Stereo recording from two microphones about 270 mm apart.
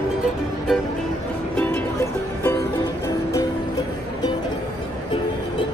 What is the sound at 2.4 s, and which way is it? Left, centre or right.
Music, centre.